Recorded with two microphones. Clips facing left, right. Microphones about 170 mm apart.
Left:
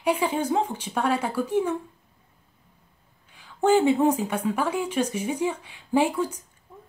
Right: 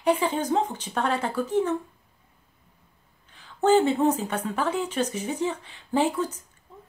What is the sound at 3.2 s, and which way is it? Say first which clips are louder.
Speech: even; 10° left (ahead or behind).